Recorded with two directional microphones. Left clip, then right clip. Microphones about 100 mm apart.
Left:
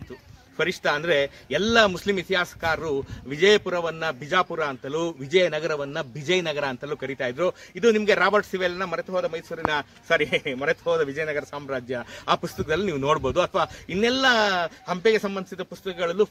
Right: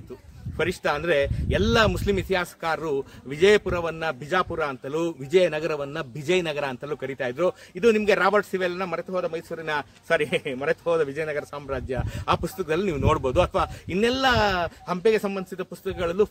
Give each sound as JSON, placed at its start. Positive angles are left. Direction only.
{"t": 0.6, "sound": "a man's voice", "side_deg": -20}